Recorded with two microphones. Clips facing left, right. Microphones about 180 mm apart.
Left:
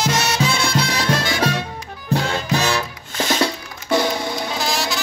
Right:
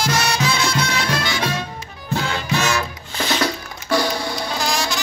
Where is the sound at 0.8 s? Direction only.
40° left (ahead or behind).